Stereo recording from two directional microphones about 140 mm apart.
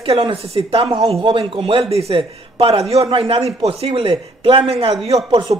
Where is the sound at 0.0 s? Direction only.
40° right (ahead or behind).